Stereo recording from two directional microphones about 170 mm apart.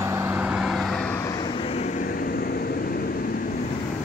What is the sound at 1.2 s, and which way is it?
Vehicle, 20° left (ahead or behind).